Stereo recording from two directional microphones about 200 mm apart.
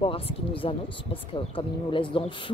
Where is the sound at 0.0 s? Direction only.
30° left (ahead or behind).